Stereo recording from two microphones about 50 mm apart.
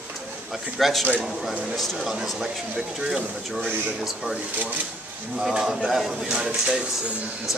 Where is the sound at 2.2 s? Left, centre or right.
Centre.